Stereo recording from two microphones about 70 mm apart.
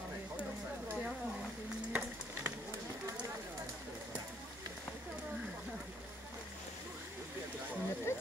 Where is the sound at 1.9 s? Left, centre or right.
Right.